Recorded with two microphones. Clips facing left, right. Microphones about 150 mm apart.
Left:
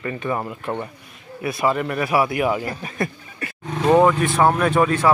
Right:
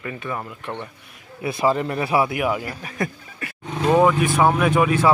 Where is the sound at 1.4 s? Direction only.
25° right (ahead or behind).